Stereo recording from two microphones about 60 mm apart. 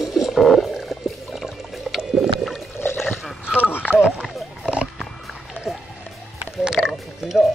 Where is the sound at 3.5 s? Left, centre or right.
Left.